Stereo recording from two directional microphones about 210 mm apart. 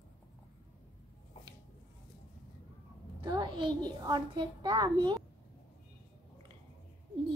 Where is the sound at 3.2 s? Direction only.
20° right (ahead or behind).